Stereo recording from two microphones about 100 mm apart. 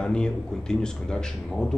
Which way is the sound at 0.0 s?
10° left (ahead or behind).